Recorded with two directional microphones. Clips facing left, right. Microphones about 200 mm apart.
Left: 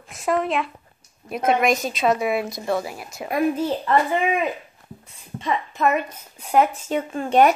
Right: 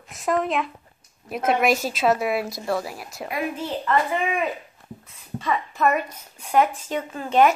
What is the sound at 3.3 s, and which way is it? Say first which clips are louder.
Speech: left 7 dB; 40° left (ahead or behind).